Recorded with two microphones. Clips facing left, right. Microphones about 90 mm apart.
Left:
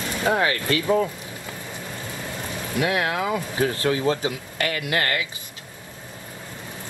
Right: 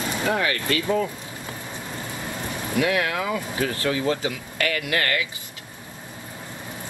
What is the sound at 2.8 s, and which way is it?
Speech, 25° left (ahead or behind).